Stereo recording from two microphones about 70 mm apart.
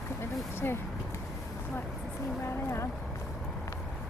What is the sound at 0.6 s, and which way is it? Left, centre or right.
Speech, left.